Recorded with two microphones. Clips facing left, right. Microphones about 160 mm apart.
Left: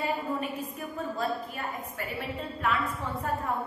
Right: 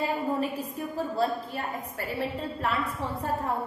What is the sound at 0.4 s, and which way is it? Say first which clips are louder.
A woman's voice: right 4 dB; 30° right (ahead or behind).